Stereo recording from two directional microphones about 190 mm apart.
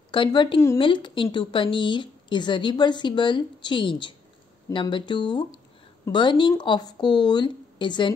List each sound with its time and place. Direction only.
0.1 s a woman's voice: 25° left (ahead or behind)